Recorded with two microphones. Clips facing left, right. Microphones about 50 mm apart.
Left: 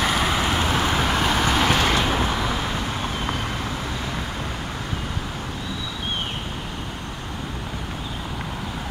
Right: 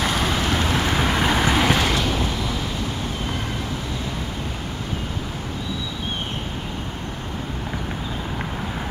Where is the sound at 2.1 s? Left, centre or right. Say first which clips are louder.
Left 2 dB; left.